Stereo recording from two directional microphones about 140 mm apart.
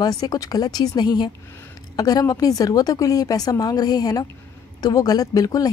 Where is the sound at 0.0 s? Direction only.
30° left (ahead or behind).